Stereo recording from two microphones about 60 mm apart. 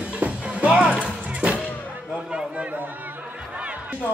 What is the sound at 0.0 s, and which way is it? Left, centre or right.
Music, right.